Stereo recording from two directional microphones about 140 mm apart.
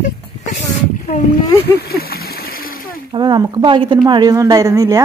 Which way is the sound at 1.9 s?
90° left.